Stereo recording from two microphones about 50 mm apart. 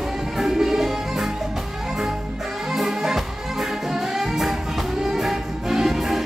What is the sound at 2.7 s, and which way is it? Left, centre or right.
Music, centre.